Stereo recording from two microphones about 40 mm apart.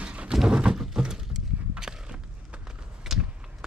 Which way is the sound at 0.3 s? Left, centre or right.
Centre.